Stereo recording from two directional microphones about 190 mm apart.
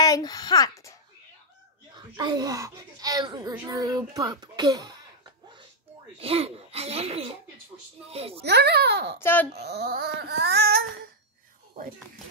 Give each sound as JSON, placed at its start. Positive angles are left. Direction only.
{"t": 0.0, "sound": "a sound", "side_deg": 20}
{"t": 2.0, "sound": "a child's voice", "side_deg": -20}
{"t": 6.1, "sound": "speech", "side_deg": -30}
{"t": 8.4, "sound": "speech", "side_deg": -60}
{"t": 9.2, "sound": "speech", "side_deg": 10}
{"t": 9.5, "sound": "speech", "side_deg": -60}